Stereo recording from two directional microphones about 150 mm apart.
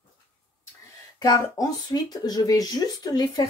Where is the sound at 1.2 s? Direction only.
25° left (ahead or behind).